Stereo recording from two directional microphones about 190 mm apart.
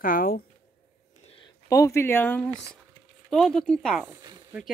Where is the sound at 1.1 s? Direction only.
35° left (ahead or behind).